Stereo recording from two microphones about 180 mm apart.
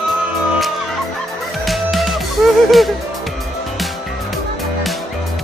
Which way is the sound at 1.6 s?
Centre (ahead or behind).